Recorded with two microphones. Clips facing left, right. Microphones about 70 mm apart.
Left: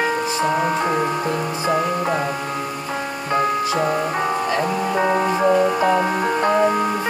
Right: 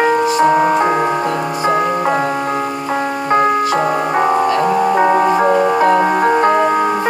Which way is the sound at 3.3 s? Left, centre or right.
Right.